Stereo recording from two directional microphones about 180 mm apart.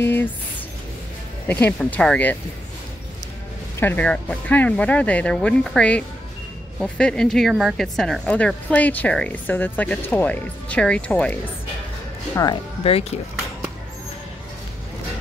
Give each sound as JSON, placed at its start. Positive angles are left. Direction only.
{"t": 0.0, "sound": "speech", "side_deg": 10}
{"t": 1.5, "sound": "speech", "side_deg": 10}
{"t": 3.8, "sound": "speech", "side_deg": 10}
{"t": 12.4, "sound": "speech", "side_deg": 25}